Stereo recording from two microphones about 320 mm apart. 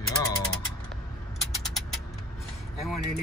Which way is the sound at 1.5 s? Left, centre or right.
Centre.